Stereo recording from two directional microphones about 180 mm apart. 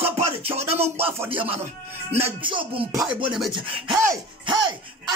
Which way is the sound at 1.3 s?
30° right (ahead or behind).